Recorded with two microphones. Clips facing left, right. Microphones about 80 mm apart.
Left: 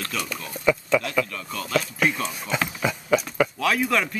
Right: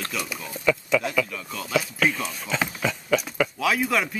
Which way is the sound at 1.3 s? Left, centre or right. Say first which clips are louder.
Even; centre.